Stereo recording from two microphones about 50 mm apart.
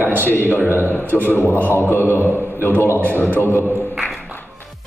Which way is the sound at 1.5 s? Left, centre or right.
Left.